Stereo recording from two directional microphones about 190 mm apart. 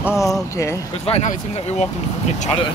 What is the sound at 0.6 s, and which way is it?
Speech, 15° left (ahead or behind).